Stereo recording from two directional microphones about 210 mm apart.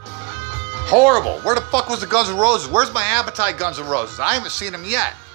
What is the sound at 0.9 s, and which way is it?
Speech, centre (ahead or behind).